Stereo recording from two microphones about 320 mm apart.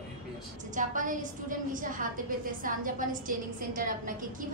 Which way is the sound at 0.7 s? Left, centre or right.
Right.